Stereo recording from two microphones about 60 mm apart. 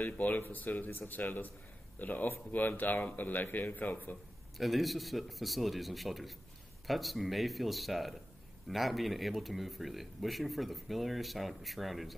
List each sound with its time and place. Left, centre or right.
0.0 s speech: left
4.6 s speech: centre